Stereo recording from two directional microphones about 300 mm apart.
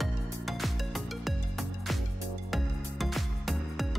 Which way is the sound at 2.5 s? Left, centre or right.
Centre.